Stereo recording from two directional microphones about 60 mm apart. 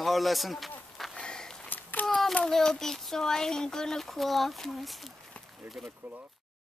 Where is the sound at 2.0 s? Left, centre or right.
Centre.